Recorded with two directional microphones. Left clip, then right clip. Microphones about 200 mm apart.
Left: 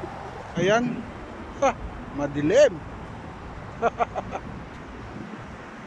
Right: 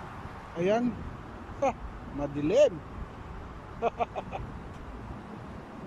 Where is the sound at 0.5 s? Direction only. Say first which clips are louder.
Left 6 dB; centre (ahead or behind).